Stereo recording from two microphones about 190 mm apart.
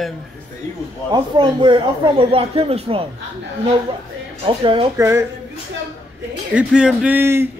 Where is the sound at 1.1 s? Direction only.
25° right (ahead or behind).